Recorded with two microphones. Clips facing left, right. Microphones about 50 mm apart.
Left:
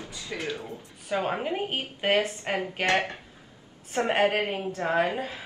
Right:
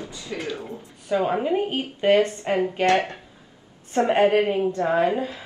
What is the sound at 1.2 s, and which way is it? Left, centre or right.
Speech, centre.